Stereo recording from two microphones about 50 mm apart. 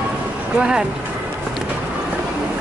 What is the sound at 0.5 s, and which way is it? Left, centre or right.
Speech, centre.